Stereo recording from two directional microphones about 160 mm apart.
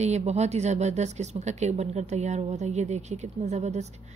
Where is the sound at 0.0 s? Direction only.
45° right (ahead or behind).